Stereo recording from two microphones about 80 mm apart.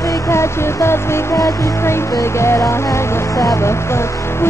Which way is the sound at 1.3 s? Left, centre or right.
Left.